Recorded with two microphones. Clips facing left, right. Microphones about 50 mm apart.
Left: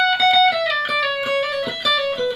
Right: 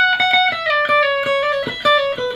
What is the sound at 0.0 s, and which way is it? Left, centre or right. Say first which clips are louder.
Music: right 2 dB; centre.